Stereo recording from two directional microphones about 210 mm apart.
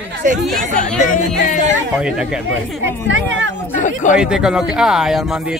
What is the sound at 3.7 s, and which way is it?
Speech, 35° left (ahead or behind).